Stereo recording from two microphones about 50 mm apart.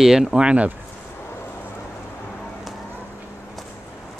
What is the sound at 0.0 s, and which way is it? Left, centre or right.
Speech, centre.